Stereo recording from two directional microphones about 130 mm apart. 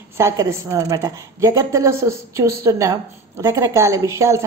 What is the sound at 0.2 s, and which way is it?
A woman's voice, 25° right (ahead or behind).